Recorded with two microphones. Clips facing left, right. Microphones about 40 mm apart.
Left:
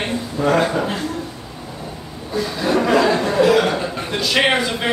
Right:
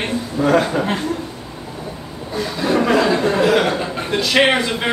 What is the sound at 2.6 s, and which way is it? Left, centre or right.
Chuckle, centre.